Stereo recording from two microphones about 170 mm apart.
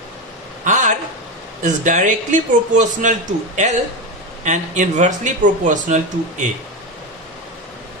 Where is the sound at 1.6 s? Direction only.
50° right (ahead or behind).